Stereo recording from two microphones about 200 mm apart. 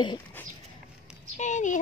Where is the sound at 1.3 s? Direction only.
35° left (ahead or behind).